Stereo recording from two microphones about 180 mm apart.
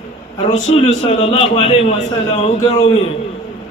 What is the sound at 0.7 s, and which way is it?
A man's voice, 40° left (ahead or behind).